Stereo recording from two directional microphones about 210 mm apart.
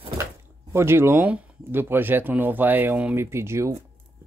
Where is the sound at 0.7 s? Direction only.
10° right (ahead or behind).